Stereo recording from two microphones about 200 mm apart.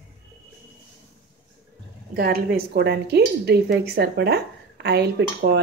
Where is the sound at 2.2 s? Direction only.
50° right (ahead or behind).